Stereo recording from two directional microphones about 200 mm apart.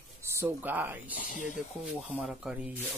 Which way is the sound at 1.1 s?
40° left (ahead or behind).